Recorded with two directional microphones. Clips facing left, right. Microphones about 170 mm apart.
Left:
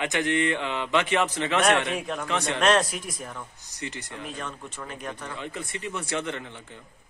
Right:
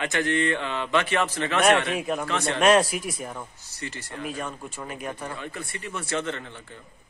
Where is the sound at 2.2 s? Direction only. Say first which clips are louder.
Right 1 dB; 15° left (ahead or behind).